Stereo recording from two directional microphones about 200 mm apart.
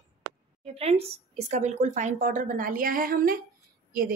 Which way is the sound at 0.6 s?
30° right (ahead or behind).